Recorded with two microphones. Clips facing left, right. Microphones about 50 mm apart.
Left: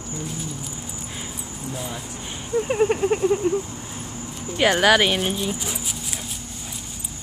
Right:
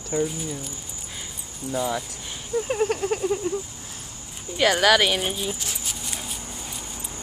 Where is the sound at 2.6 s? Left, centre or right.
Centre.